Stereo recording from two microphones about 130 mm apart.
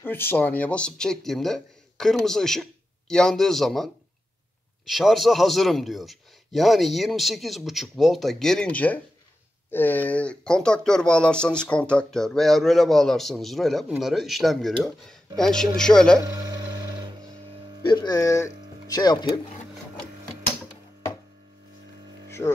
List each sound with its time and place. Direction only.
0.0 s speech: 15° left (ahead or behind)
16.2 s a sound: 30° right (ahead or behind)
17.8 s speech: 30° left (ahead or behind)